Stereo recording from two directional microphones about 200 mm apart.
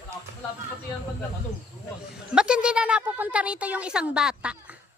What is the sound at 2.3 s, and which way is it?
A woman's voice, 5° right (ahead or behind).